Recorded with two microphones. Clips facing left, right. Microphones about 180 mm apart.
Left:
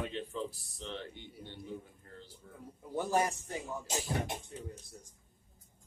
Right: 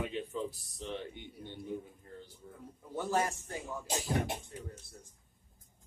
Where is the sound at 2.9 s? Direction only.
15° left (ahead or behind).